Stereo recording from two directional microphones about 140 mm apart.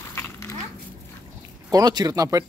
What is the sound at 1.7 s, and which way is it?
Speech, 30° right (ahead or behind).